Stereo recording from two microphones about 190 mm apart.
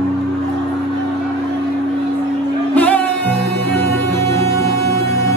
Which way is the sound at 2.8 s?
5° left (ahead or behind).